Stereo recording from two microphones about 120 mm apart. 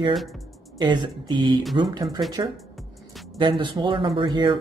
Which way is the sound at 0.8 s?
40° right (ahead or behind).